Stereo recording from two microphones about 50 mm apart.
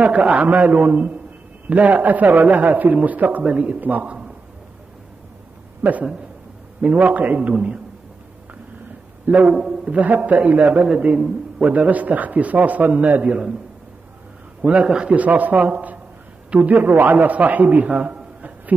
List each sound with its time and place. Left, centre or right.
0.0 s a man's voice: right
5.8 s a man's voice: right
9.3 s a man's voice: right
9.6 s a man's voice: centre
9.9 s a man's voice: right
10.9 s a man's voice: right
14.6 s a man's voice: right
15.1 s a man's voice: right